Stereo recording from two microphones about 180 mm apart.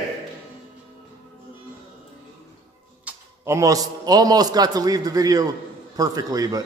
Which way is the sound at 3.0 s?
15° right (ahead or behind).